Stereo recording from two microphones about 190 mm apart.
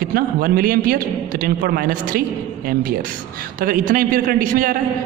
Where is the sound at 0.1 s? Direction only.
50° right (ahead or behind).